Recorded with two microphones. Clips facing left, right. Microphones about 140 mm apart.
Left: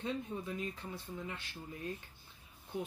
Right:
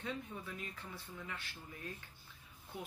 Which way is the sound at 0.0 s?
20° left (ahead or behind).